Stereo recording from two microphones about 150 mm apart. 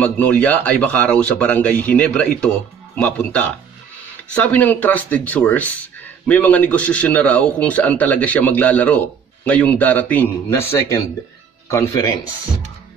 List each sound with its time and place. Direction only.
0.0 s a man's voice: 10° left (ahead or behind)